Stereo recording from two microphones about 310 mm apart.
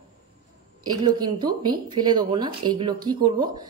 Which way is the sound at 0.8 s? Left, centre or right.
Centre.